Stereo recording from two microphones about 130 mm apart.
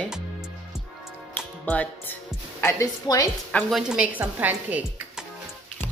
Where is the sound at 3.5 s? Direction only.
5° left (ahead or behind); by 5.2 s 10° right (ahead or behind).